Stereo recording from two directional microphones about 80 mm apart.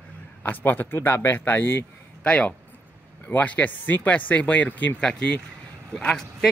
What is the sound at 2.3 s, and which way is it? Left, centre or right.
Speech, centre.